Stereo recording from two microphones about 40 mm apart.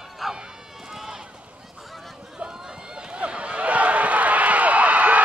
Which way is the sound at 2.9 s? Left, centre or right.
Right.